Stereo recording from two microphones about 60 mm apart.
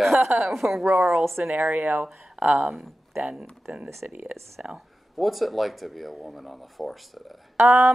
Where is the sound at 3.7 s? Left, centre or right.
Right.